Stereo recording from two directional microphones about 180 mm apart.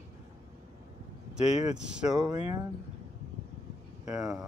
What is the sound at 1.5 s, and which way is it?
Speech, 40° left (ahead or behind).